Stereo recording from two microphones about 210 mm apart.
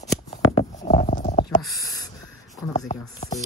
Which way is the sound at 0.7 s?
35° left (ahead or behind).